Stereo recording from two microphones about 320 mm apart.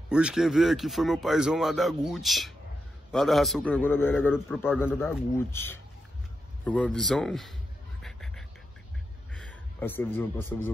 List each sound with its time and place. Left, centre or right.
0.1 s a man's voice: centre
8.0 s duck: centre
9.3 s a man's voice: centre